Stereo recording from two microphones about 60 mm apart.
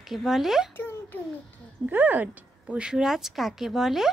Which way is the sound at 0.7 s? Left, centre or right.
Left.